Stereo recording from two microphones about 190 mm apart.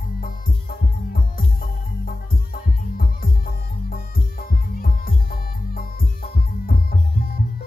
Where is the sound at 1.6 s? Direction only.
50° left (ahead or behind).